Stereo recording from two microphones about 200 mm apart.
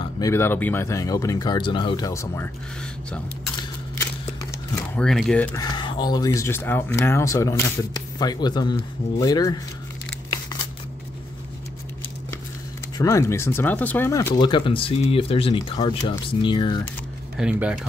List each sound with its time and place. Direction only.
0.0 s speech: 15° left (ahead or behind)
4.5 s speech: 5° left (ahead or behind)
5.6 s speech: 20° left (ahead or behind)
12.9 s speech: 15° left (ahead or behind)
17.4 s speech: 5° right (ahead or behind)